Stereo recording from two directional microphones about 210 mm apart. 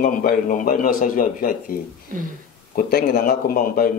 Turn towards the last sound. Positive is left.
turn(degrees=40)  # may be behind; listen again after turning